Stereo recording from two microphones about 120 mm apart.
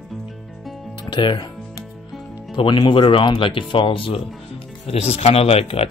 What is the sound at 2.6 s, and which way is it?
Speech, 45° left (ahead or behind).